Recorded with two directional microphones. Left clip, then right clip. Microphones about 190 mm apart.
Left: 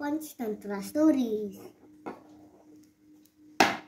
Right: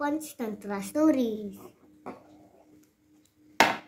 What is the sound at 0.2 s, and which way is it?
Speech, 25° right (ahead or behind).